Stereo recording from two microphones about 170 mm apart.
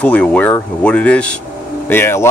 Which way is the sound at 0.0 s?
10° left (ahead or behind).